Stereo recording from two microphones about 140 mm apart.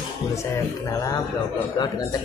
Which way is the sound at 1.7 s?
30° left (ahead or behind).